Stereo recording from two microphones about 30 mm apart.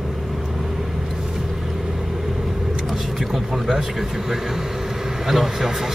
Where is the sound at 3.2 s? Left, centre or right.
Centre.